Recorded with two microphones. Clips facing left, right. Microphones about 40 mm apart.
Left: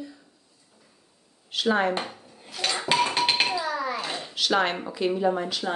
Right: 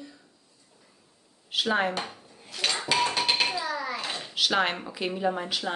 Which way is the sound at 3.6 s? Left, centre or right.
Centre.